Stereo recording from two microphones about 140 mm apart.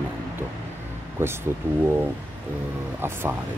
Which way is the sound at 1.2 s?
15° right (ahead or behind).